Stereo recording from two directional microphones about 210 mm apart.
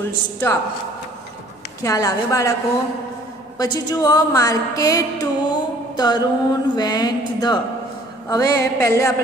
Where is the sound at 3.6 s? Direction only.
15° left (ahead or behind).